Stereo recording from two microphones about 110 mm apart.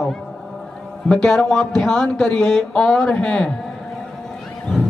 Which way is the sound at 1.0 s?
5° left (ahead or behind).